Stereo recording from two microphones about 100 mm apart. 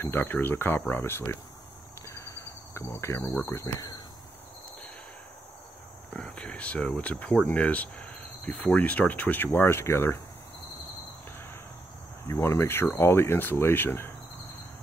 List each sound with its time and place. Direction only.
0.0 s speech: 20° left (ahead or behind)
2.0 s cricket: 30° left (ahead or behind)
3.4 s speech: 25° left (ahead or behind)
6.1 s speech: 10° left (ahead or behind); by 10.2 s 25° left (ahead or behind)
12.3 s speech: 25° left (ahead or behind)